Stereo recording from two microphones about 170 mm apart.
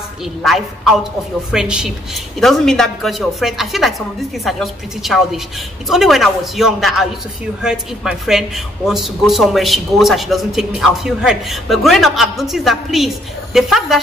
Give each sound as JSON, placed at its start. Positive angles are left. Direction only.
{"t": 0.4, "sound": "speech", "side_deg": 0}